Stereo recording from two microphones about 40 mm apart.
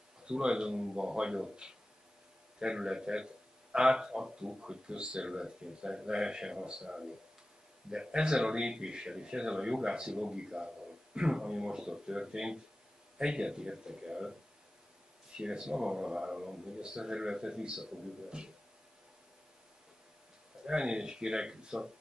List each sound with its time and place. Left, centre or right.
0.2 s speech: right
15.3 s speech: centre
20.6 s speech: centre